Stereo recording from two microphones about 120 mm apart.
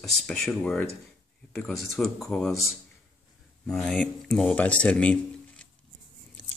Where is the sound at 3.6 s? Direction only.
5° left (ahead or behind).